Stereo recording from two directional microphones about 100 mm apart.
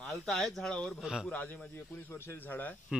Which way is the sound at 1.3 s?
15° left (ahead or behind).